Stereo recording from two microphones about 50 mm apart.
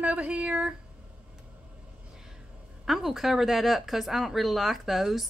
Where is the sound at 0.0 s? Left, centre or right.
Right.